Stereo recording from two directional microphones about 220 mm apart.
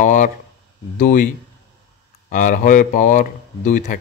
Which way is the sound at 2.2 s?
35° left (ahead or behind).